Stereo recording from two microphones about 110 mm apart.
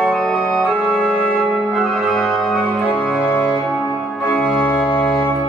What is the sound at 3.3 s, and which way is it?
Organ, 5° left (ahead or behind).